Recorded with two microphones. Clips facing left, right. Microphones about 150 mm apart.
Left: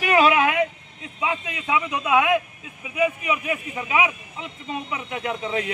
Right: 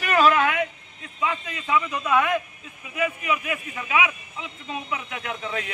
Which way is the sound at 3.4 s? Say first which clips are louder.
Left 3 dB; 25° left (ahead or behind).